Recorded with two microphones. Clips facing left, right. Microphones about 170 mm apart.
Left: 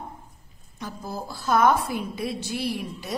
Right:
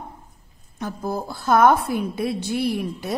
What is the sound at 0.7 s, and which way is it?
A woman's voice, 55° right (ahead or behind).